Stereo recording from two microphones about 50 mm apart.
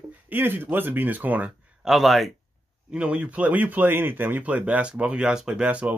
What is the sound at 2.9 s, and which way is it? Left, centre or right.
Speech, right.